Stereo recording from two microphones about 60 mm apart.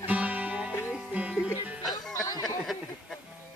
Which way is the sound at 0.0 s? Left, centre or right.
Right.